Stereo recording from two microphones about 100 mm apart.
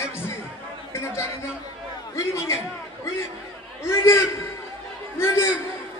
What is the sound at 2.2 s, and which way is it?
Speech, 25° left (ahead or behind).